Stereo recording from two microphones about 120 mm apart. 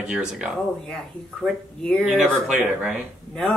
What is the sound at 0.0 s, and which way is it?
Speech, 10° right (ahead or behind).